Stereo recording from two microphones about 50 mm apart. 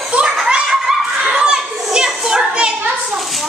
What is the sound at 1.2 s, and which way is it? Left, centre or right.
Children playing, centre.